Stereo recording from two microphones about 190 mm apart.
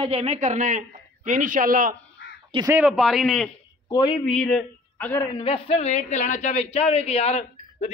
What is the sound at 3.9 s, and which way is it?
Speech, 20° left (ahead or behind).